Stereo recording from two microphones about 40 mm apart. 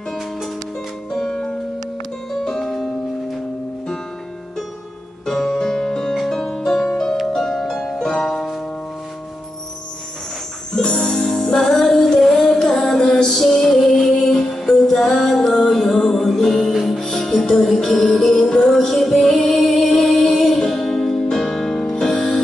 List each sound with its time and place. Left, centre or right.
1.1 s music: centre
2.6 s music: centre
5.2 s music: centre
6.9 s harp: centre
7.3 s music: centre
10.7 s music: left